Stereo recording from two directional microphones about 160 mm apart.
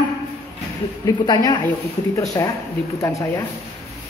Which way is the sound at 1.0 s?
20° left (ahead or behind).